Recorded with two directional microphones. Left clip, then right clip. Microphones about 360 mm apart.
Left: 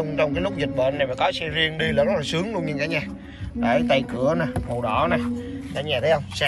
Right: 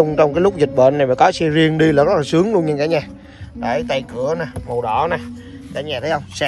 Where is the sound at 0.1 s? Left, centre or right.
Centre.